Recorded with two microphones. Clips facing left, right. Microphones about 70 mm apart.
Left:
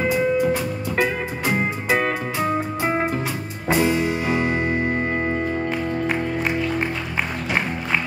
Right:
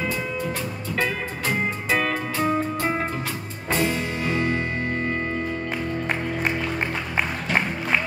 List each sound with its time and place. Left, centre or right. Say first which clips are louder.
0.1 s music: left 8 dB; centre
2.3 s music: even; centre
5.7 s music: left 3 dB; centre